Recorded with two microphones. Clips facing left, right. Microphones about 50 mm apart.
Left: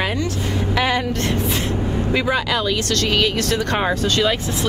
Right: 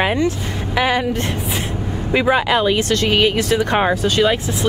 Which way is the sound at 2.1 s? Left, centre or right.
Right.